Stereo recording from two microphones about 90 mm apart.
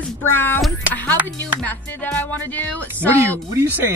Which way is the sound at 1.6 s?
15° left (ahead or behind).